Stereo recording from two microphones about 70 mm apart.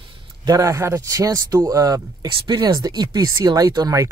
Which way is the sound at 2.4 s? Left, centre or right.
Right.